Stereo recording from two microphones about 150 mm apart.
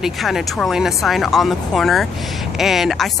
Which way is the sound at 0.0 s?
Centre (ahead or behind).